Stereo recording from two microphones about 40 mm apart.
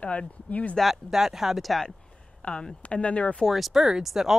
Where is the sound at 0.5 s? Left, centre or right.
Left.